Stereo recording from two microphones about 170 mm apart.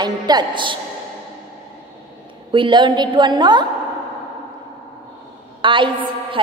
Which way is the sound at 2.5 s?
30° right (ahead or behind).